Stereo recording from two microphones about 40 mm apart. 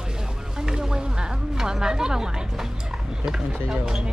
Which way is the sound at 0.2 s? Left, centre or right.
Centre.